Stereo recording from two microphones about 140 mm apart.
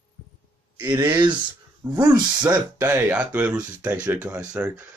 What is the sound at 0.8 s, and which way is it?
Speech, 35° right (ahead or behind).